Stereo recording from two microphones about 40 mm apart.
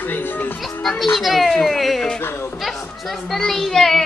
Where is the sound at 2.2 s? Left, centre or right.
Left.